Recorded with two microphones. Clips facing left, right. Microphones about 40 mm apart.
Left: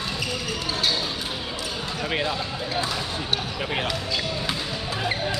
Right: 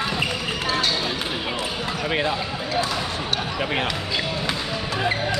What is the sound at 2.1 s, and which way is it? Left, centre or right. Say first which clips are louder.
Speech: right 3 dB; centre.